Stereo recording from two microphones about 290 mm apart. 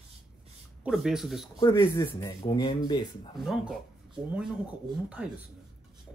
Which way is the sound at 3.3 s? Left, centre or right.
Centre.